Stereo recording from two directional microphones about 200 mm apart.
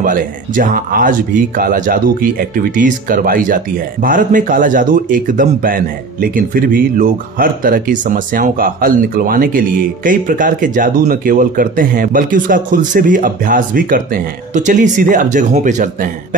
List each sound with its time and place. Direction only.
0.0 s a man's voice: 45° right (ahead or behind)